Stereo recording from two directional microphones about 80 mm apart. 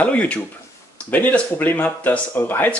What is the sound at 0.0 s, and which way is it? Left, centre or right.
Speech, centre.